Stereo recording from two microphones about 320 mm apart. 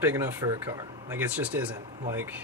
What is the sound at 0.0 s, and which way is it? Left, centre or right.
Speech, centre.